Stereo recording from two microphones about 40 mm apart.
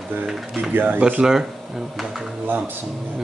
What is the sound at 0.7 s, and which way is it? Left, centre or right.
Speech, right.